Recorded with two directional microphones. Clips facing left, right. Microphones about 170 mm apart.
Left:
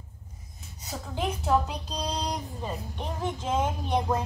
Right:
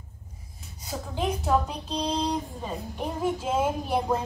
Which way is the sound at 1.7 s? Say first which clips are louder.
Right 4 dB; 10° right (ahead or behind).